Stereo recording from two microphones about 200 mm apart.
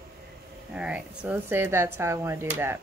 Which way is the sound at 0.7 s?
5° right (ahead or behind).